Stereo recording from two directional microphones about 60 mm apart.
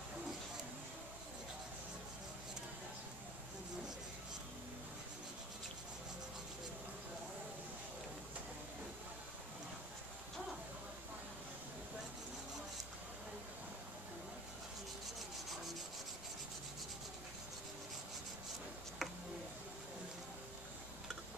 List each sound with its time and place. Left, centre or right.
19.0 s tick: centre